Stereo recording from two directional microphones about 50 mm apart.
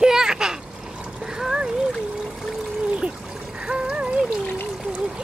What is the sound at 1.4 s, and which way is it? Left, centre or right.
Splash, centre.